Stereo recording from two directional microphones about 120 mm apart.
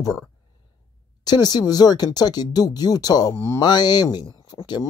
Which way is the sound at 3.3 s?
20° left (ahead or behind).